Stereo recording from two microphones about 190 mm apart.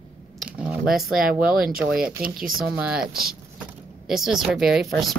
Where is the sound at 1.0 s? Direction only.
Centre (ahead or behind).